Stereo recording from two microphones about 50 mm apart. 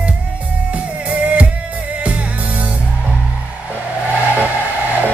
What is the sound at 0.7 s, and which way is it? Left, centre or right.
Music, right.